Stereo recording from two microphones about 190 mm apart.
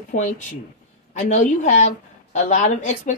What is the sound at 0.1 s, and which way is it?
Speech, 45° left (ahead or behind).